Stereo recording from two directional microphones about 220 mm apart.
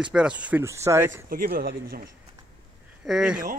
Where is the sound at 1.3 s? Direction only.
40° right (ahead or behind).